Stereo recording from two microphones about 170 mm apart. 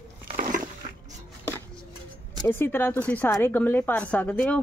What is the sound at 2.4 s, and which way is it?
A woman's voice, 15° left (ahead or behind).